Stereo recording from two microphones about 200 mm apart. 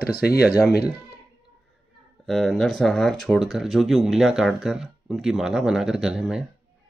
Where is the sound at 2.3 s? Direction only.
Centre (ahead or behind).